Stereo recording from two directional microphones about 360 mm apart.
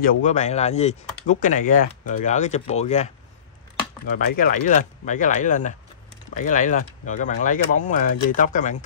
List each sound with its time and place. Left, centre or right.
0.0 s speech: centre